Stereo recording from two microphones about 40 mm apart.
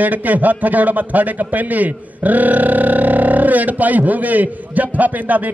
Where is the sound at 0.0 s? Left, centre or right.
Right.